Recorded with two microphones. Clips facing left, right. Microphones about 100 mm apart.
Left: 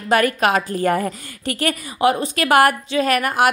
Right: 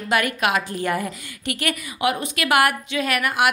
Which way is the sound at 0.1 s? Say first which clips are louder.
Left 5 dB; 40° left (ahead or behind).